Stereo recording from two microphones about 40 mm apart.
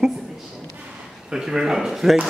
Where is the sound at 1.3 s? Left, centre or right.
Centre.